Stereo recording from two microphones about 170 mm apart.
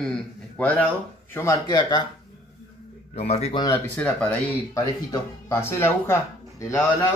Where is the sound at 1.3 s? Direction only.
20° left (ahead or behind).